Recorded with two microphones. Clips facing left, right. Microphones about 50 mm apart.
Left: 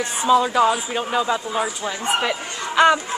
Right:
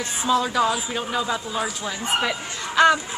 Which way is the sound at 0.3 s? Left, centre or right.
Centre.